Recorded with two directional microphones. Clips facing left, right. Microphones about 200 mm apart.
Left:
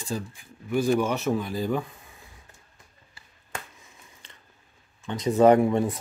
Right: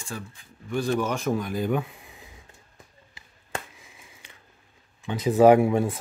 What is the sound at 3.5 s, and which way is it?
Finger snapping, 10° right (ahead or behind).